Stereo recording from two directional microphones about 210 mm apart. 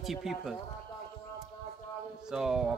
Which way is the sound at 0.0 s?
Centre (ahead or behind).